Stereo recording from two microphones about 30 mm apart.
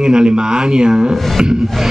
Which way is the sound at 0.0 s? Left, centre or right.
Right.